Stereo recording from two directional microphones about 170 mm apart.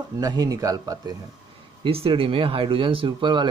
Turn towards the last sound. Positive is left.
turn(degrees=-25)  # may be behind; listen again after turning